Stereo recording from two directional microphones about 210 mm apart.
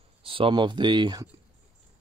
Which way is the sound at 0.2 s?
25° right (ahead or behind).